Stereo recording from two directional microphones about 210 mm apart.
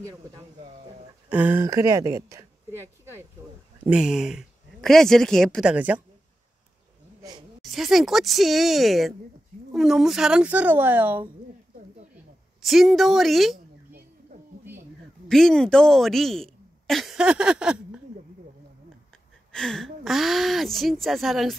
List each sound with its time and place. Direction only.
1.3 s a woman's voice: 10° right (ahead or behind)
3.8 s speech: 5° right (ahead or behind)
7.6 s speech: centre (ahead or behind)
12.6 s speech: centre (ahead or behind)
14.7 s a sound: 10° right (ahead or behind)
15.2 s a woman's voice: centre (ahead or behind)
19.5 s speech: 5° left (ahead or behind)